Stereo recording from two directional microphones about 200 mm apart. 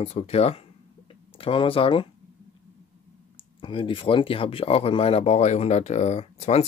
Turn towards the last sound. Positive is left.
turn(degrees=35)  # may be behind; listen again after turning